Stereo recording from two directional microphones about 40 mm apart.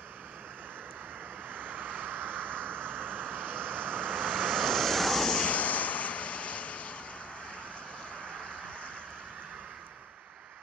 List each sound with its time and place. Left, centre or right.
1.5 s vehicle: right
4.1 s vehicle: right
4.5 s vehicle: centre
5.4 s a sound: left